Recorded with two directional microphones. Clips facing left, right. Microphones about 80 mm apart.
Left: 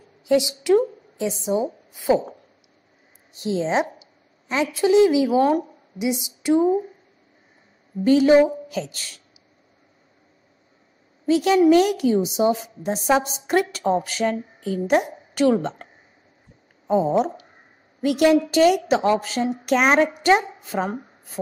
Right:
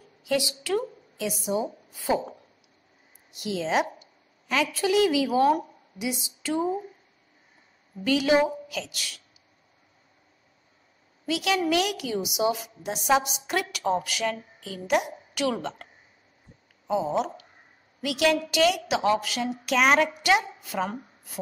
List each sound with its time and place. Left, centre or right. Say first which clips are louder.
0.2 s speech: left 7 dB; left
3.3 s a woman's voice: left 4 dB; left
5.4 s a woman's voice: left 2 dB; left
6.4 s a woman's voice: left 9 dB; left
8.0 s a woman's voice: left 7 dB; left
11.2 s a woman's voice: left 9 dB; left
16.8 s a woman's voice: left 6 dB; left